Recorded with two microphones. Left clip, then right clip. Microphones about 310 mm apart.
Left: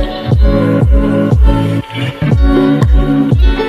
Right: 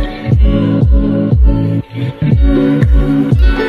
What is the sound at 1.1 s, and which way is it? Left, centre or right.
Music, left.